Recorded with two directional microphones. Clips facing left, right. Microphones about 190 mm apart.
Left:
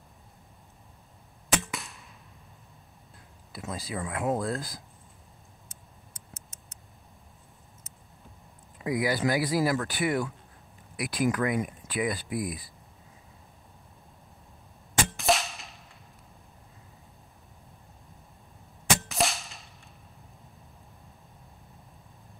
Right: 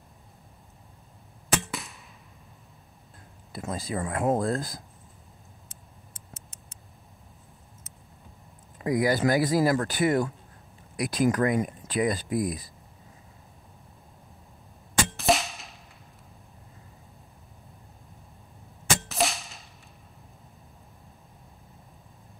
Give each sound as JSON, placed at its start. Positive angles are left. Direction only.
{"t": 1.7, "sound": "arrow", "side_deg": 0}
{"t": 3.5, "sound": "speech", "side_deg": -50}
{"t": 8.8, "sound": "speech", "side_deg": -45}
{"t": 15.1, "sound": "whip", "side_deg": 0}
{"t": 19.0, "sound": "whip", "side_deg": 0}